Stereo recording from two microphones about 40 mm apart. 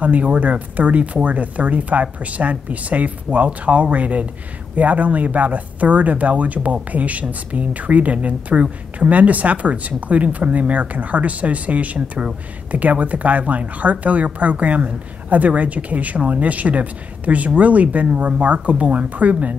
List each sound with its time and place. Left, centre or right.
0.0 s speech: right